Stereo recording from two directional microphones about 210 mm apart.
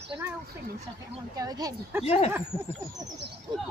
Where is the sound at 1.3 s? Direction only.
20° right (ahead or behind).